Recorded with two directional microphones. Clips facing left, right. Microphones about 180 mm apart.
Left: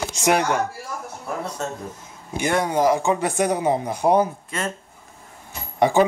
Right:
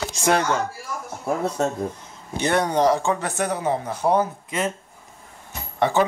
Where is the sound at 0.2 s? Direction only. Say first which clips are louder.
Left 1 dB; 15° left (ahead or behind).